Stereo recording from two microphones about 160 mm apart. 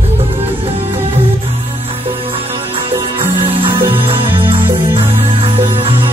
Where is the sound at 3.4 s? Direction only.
35° right (ahead or behind).